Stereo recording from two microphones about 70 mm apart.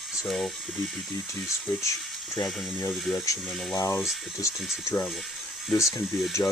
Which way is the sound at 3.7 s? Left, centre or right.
Left.